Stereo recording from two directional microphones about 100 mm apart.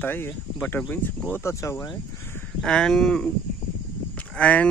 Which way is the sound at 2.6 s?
5° left (ahead or behind).